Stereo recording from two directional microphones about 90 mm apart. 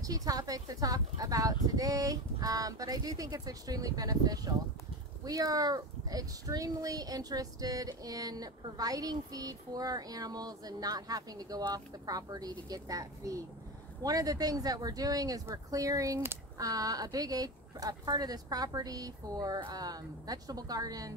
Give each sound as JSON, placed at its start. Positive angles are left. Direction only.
{"t": 0.0, "sound": "speech", "side_deg": -45}